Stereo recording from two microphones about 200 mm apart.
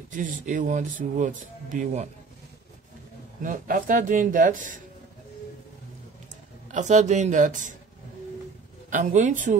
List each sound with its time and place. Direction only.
0.1 s speech: 40° right (ahead or behind)
3.4 s speech: 40° right (ahead or behind)
6.7 s speech: 35° right (ahead or behind)
8.9 s speech: 40° right (ahead or behind)